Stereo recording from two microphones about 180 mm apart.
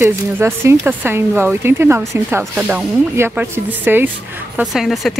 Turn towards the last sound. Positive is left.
turn(degrees=0)  # may be behind; listen again after turning